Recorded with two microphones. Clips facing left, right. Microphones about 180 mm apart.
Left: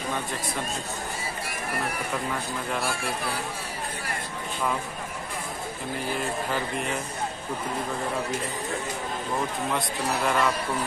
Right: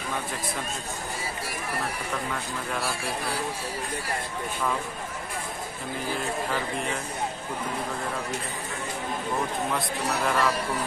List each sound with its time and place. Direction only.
9.7 s a man's voice: centre (ahead or behind)